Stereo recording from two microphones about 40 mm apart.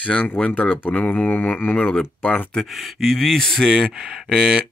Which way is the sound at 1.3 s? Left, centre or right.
Left.